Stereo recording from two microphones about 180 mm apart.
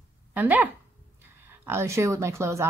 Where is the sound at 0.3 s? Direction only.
10° right (ahead or behind).